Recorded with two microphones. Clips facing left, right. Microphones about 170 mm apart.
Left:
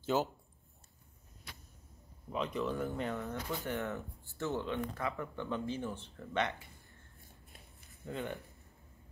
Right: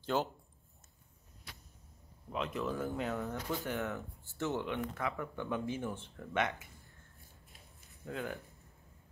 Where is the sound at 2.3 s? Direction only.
Centre (ahead or behind).